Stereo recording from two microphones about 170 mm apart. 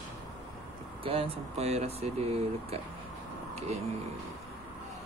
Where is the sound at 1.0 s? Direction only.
35° right (ahead or behind).